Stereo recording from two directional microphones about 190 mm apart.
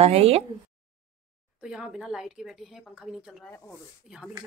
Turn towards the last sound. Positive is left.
turn(degrees=0)  # may be behind; listen again after turning